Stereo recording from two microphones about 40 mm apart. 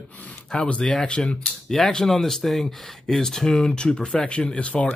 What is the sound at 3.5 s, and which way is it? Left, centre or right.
Speech, left.